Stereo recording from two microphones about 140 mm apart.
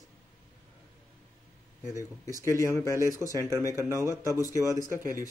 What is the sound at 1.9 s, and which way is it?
Speech, 20° left (ahead or behind).